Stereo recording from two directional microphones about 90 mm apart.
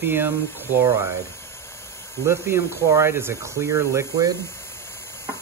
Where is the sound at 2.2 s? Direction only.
25° right (ahead or behind).